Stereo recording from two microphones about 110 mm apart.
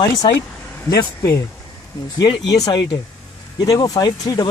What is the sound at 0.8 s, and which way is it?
Speech, 30° left (ahead or behind).